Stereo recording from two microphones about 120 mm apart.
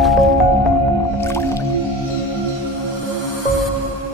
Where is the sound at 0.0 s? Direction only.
Centre (ahead or behind).